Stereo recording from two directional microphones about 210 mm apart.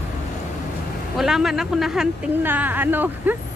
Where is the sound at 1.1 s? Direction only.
Centre (ahead or behind).